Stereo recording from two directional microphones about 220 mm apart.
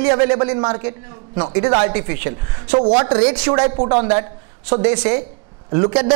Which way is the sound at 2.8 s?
25° right (ahead or behind).